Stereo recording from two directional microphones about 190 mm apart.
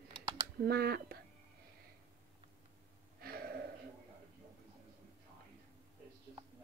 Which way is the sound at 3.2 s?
55° right (ahead or behind).